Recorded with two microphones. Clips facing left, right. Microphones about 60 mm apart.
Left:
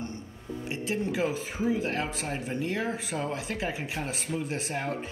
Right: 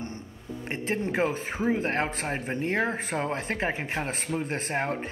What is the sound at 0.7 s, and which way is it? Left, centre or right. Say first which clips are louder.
Speech: right 2 dB; right.